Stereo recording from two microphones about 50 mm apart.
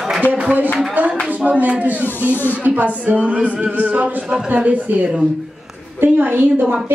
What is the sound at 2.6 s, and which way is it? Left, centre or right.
Speech, right.